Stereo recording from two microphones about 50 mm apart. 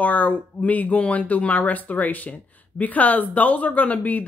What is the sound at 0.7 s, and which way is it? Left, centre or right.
Speech, left.